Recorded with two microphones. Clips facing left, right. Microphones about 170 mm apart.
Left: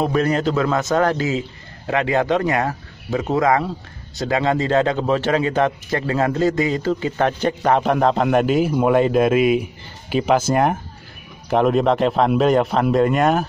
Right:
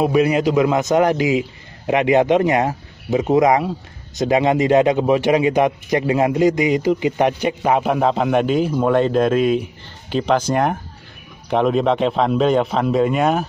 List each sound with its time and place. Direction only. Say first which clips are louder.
0.0 s a man's voice: right 3 dB; 10° right (ahead or behind)